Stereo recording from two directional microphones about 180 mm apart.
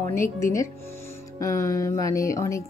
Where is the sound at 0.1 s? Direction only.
15° left (ahead or behind).